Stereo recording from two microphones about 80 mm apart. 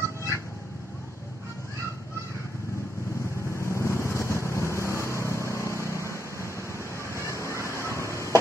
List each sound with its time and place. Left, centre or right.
3.5 s vehicle: left